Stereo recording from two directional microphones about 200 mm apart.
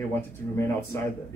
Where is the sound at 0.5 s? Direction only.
10° left (ahead or behind).